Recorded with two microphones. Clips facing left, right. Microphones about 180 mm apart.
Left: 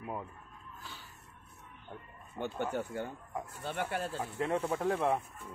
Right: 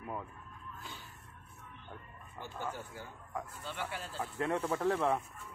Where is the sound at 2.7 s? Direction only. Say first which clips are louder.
Left 9 dB; 65° left (ahead or behind).